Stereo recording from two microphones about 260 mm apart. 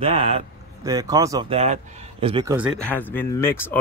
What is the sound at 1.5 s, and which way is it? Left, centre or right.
Speech, right.